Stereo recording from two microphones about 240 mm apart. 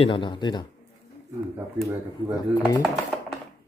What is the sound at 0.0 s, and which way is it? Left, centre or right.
Speech, left.